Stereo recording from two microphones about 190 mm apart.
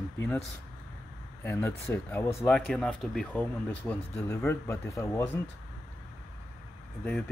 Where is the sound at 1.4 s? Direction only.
15° left (ahead or behind).